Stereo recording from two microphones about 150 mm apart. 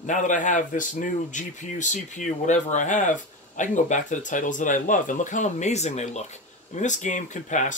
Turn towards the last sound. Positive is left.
turn(degrees=55)  # may be behind; listen again after turning